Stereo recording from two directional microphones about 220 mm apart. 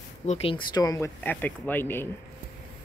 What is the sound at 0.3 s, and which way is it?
Speech, 25° left (ahead or behind).